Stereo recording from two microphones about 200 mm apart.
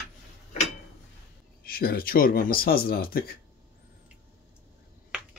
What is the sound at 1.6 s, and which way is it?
Speech, 50° left (ahead or behind).